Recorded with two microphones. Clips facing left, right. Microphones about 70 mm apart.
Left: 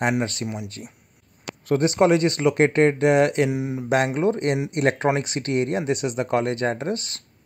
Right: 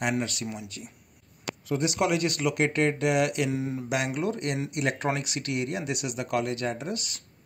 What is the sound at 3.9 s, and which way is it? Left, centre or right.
Speech, left.